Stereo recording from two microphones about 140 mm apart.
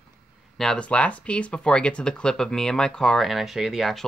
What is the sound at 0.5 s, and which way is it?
Speech, 5° left (ahead or behind).